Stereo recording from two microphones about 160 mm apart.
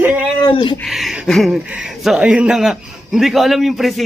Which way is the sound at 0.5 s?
30° left (ahead or behind).